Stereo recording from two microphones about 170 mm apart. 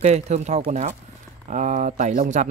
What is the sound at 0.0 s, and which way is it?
Speech, 40° right (ahead or behind).